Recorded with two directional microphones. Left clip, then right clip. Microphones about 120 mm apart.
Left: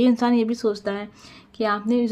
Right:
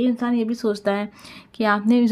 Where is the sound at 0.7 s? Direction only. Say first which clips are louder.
Right 5 dB; 30° right (ahead or behind).